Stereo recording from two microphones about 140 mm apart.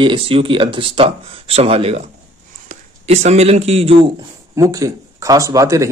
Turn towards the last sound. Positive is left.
turn(degrees=-25)  # may be behind; listen again after turning